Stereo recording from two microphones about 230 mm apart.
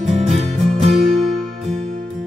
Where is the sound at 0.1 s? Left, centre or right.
Right.